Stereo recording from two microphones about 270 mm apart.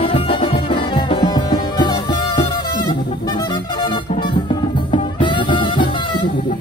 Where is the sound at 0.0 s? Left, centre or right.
Centre.